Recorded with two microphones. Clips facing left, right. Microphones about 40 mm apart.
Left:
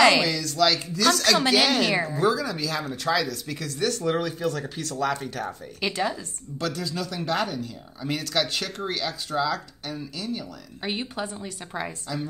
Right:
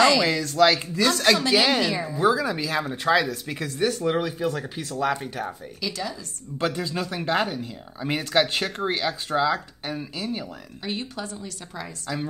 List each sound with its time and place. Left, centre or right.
0.2 s speech: right; by 5.6 s centre
5.8 s a woman's voice: left
6.6 s speech: right
10.8 s a woman's voice: left